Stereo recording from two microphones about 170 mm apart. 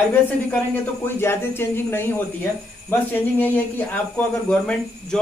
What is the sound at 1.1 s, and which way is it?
A man's voice, 15° left (ahead or behind).